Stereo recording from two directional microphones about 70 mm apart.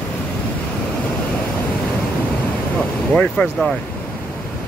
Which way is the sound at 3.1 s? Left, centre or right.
Centre.